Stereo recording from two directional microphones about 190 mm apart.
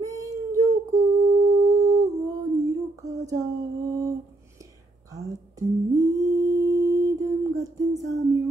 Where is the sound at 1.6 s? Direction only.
15° right (ahead or behind).